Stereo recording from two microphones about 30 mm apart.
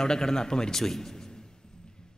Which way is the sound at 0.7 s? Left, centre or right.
Centre.